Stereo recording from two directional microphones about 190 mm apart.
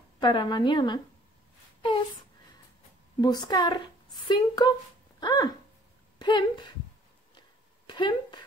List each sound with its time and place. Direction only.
0.2 s a woman's voice: 25° left (ahead or behind)
3.2 s a woman's voice: 20° left (ahead or behind)
7.3 s a sound: 25° left (ahead or behind)